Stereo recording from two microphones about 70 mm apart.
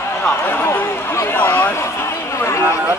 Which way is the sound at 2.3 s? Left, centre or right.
Left.